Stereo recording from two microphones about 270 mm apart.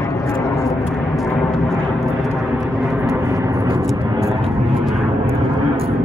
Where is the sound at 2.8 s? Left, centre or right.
Centre.